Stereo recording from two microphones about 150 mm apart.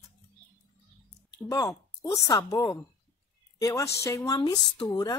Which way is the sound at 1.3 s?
25° left (ahead or behind).